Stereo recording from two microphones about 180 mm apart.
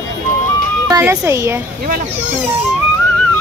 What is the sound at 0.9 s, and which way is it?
Speech, 15° right (ahead or behind).